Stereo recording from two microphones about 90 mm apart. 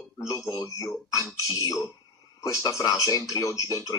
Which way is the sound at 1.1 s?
40° left (ahead or behind).